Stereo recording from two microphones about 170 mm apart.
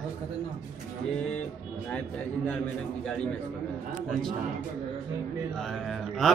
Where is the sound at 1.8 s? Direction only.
10° left (ahead or behind).